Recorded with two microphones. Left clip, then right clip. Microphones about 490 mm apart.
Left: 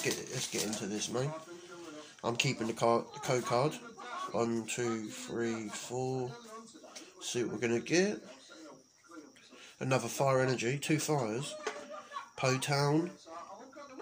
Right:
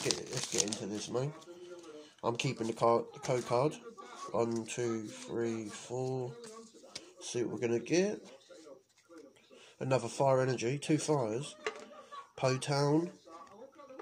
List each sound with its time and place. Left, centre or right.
0.5 s a sound: right
2.2 s speech: right
9.8 s speech: right